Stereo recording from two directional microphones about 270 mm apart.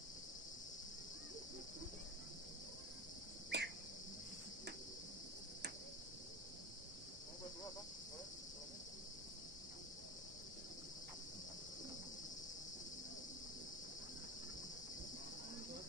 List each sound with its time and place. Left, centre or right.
3.5 s cricket: right